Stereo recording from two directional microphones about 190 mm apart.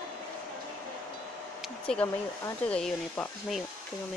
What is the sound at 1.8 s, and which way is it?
Speech, 5° left (ahead or behind).